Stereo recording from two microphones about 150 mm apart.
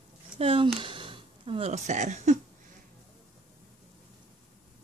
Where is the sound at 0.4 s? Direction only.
40° right (ahead or behind).